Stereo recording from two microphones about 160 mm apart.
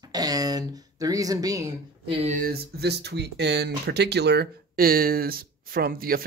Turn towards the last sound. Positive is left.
turn(degrees=-65)  # may be behind; listen again after turning